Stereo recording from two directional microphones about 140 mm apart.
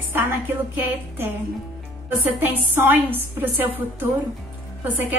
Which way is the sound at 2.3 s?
15° right (ahead or behind).